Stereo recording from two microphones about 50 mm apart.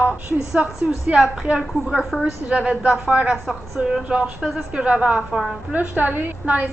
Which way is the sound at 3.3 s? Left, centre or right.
Centre.